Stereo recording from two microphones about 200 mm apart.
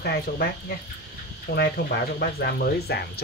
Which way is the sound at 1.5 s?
55° left (ahead or behind).